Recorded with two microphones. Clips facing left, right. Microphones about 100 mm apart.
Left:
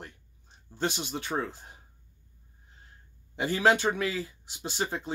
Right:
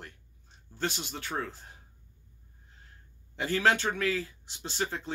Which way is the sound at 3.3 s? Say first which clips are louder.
Left 2 dB; 15° left (ahead or behind).